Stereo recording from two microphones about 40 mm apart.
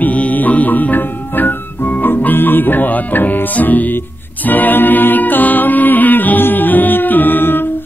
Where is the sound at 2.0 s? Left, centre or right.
Left.